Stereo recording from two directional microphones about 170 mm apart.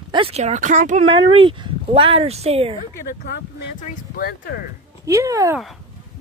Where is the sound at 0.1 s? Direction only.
35° right (ahead or behind).